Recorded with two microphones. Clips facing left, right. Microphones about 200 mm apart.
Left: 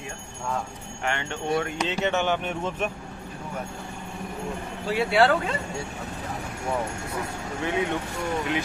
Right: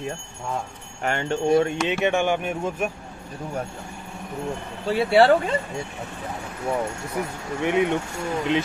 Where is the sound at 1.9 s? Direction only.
15° right (ahead or behind).